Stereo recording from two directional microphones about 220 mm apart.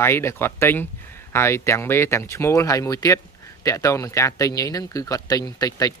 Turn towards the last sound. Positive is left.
turn(degrees=15)  # may be behind; listen again after turning